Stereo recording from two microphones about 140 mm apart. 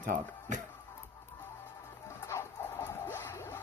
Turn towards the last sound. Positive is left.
turn(degrees=15)  # may be behind; listen again after turning